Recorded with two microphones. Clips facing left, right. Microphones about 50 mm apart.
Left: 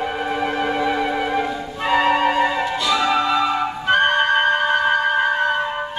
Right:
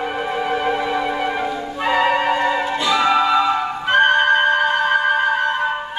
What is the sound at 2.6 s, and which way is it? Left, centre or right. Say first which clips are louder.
Flute: right 2 dB; centre.